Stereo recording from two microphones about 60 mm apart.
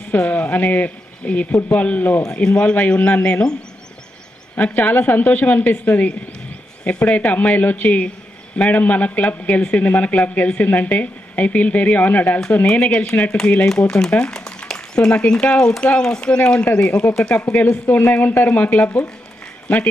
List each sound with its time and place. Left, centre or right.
0.1 s speech: left
2.2 s speech: centre
4.6 s speech: left
17.8 s speech: left
18.5 s speech: left